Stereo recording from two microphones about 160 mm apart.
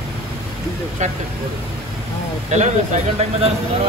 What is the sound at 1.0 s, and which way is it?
Speech, 50° right (ahead or behind).